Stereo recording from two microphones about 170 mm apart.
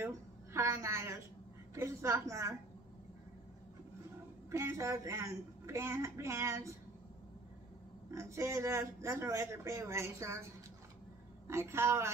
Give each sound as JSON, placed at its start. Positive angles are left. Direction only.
{"t": 0.0, "sound": "a woman's voice", "side_deg": -15}
{"t": 4.5, "sound": "a man's voice", "side_deg": -15}
{"t": 8.1, "sound": "a man's voice", "side_deg": -15}
{"t": 11.4, "sound": "a man's voice", "side_deg": -15}